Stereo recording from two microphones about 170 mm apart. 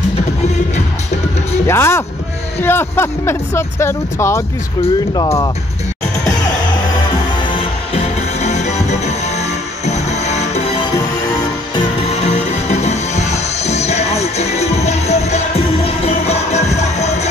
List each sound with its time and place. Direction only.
1.7 s speech: 15° left (ahead or behind)
7.5 s music: 40° left (ahead or behind)
12.1 s music: 40° left (ahead or behind)